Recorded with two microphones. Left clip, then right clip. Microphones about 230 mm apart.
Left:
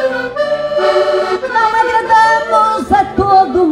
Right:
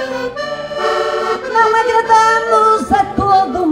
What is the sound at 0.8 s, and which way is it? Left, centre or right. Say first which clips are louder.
Music: left 3 dB; right.